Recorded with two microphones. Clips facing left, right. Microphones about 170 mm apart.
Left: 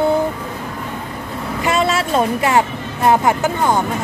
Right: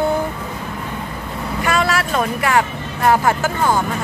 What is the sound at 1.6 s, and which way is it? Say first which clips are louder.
Vehicle: left 2 dB; 25° left (ahead or behind).